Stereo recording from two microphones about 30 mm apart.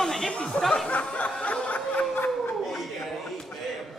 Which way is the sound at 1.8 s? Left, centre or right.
Left.